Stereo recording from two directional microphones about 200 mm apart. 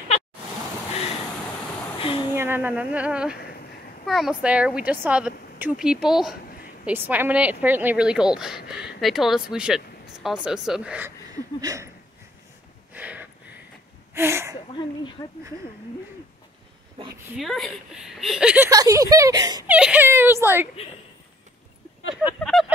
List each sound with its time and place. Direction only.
2.0 s a sound: 25° left (ahead or behind)
2.3 s speech: 10° right (ahead or behind)
12.9 s a sound: 10° right (ahead or behind)
14.1 s speech: 10° right (ahead or behind)
17.4 s speech: centre (ahead or behind)
18.7 s speech: 15° right (ahead or behind)
19.7 s speech: 5° right (ahead or behind)
22.1 s speech: centre (ahead or behind)